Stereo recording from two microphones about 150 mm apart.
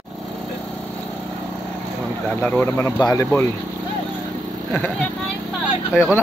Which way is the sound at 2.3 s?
10° left (ahead or behind).